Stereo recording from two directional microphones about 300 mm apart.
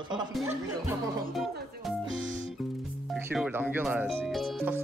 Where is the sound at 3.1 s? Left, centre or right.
Centre.